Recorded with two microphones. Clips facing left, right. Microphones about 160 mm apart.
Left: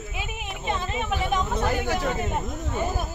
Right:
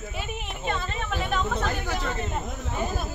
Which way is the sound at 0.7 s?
15° left (ahead or behind).